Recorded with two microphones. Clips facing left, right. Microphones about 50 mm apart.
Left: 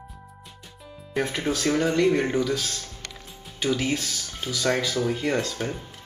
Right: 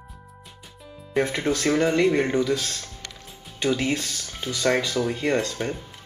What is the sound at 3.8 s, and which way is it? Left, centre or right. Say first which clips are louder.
Speech: right 1 dB; centre.